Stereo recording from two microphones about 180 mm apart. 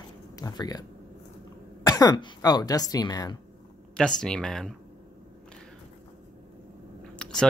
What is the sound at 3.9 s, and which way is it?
Speech, 5° left (ahead or behind).